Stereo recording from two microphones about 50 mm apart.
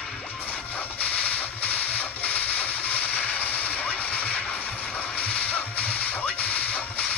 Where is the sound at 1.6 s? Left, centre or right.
Left.